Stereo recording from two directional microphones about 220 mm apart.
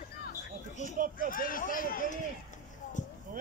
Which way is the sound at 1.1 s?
40° left (ahead or behind).